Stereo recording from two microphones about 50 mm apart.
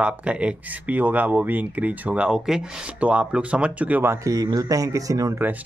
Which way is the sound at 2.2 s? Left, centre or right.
Centre.